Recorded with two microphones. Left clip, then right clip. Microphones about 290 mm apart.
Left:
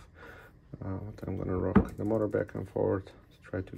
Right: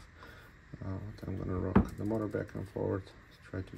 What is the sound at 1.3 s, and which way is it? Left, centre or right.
Speech, centre.